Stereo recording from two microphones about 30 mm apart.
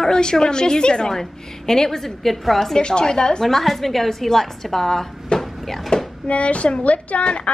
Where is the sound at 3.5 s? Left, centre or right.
Centre.